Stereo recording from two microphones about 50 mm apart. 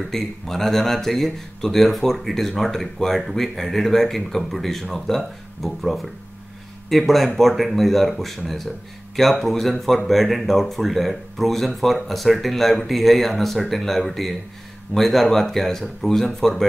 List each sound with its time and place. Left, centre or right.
0.1 s speech: centre